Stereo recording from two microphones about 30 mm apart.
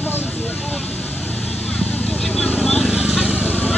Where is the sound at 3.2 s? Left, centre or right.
Right.